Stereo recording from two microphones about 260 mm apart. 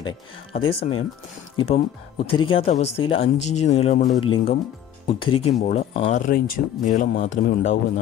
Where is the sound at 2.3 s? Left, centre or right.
Centre.